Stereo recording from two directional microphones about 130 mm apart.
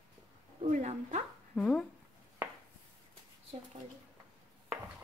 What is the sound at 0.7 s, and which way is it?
Speech, 60° right (ahead or behind).